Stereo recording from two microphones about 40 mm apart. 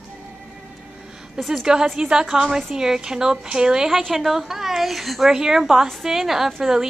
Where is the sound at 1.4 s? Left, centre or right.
Centre.